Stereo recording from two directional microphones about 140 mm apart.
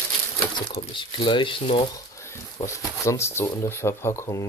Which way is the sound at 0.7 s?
35° left (ahead or behind).